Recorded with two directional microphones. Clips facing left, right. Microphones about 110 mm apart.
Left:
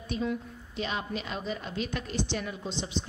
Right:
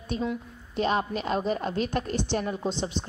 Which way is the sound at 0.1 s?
40° right (ahead or behind).